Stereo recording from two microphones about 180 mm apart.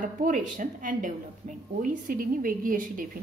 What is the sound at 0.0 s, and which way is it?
Speech, 45° right (ahead or behind).